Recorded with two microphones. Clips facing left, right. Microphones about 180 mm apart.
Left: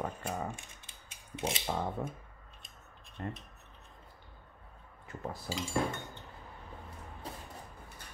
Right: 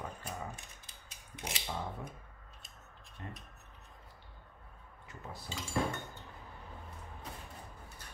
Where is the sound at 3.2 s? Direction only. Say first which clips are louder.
Left 7 dB; 55° left (ahead or behind).